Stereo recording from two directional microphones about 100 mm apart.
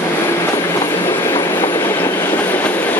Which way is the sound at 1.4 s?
25° left (ahead or behind).